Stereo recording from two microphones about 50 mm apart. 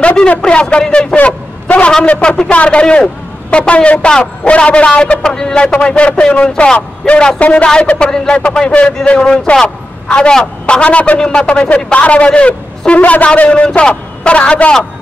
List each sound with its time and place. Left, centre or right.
0.0 s a man's voice: left
10.8 s a man's voice: left
11.2 s a man's voice: centre
11.6 s a man's voice: left